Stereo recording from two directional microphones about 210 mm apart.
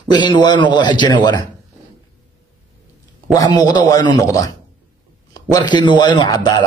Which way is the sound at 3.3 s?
15° left (ahead or behind).